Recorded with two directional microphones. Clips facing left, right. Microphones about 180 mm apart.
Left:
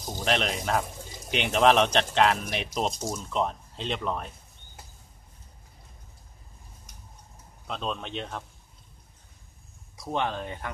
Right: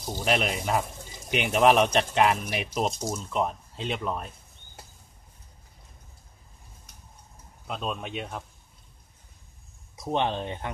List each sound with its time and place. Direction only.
0.0 s speech: 5° right (ahead or behind)
7.6 s speech: 5° right (ahead or behind)
9.9 s speech: 20° right (ahead or behind)